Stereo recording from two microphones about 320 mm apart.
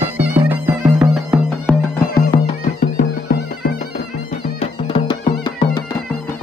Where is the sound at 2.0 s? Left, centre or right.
Left.